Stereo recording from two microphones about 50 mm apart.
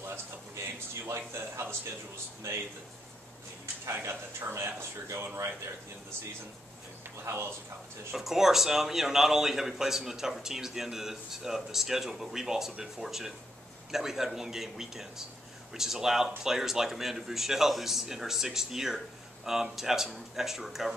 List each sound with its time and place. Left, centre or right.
0.1 s a sound: right
3.9 s speech: right
7.2 s speech: right
8.1 s speech: centre